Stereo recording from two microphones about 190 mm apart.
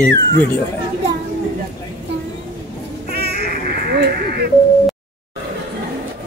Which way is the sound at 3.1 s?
60° right (ahead or behind).